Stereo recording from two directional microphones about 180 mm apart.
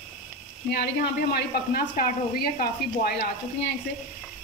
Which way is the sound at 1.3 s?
60° left (ahead or behind).